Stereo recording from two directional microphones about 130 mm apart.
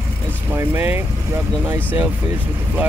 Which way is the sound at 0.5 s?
15° right (ahead or behind).